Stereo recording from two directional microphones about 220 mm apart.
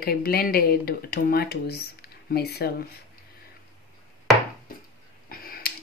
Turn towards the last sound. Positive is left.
turn(degrees=40)  # may be behind; listen again after turning